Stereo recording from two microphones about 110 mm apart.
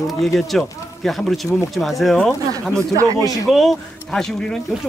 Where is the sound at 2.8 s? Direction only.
30° right (ahead or behind).